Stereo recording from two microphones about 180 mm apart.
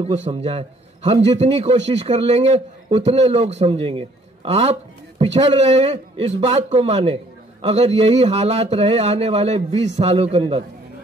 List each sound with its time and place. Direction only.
0.0 s speech: 35° right (ahead or behind)